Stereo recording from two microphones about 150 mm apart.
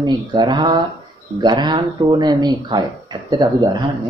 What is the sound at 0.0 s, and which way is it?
Speech, 30° right (ahead or behind).